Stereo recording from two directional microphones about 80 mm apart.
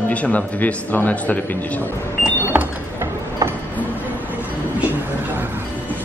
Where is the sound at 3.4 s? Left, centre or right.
Right.